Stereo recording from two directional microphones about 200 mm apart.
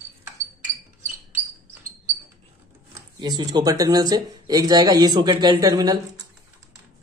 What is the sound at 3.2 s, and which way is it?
Speech, 20° right (ahead or behind).